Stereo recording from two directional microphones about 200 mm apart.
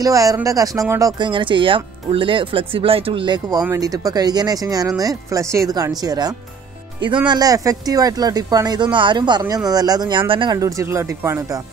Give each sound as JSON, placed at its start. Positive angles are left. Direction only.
{"t": 0.0, "sound": "speech", "side_deg": -15}